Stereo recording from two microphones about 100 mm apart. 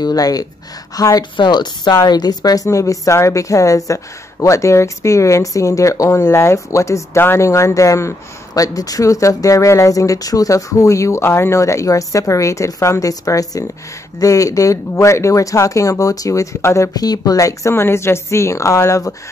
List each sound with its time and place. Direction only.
0.0 s speech: 40° left (ahead or behind)
1.3 s speech: 50° left (ahead or behind); by 19.1 s 30° left (ahead or behind)